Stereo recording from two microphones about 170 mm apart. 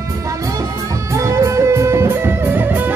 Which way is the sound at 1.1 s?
15° right (ahead or behind).